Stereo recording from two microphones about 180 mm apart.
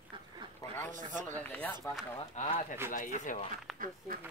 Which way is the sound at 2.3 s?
40° left (ahead or behind).